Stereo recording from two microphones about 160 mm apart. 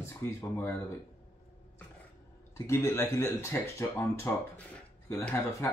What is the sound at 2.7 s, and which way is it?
Speech, 15° left (ahead or behind).